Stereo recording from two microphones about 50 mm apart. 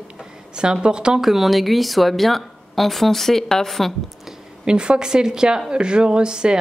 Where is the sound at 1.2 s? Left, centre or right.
Centre.